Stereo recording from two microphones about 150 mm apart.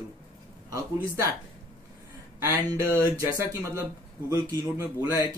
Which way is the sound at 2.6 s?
20° right (ahead or behind).